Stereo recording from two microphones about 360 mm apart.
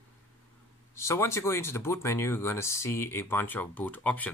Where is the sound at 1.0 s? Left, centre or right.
Centre.